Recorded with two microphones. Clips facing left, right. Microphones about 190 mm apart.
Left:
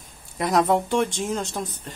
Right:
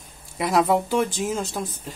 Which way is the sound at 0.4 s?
Centre (ahead or behind).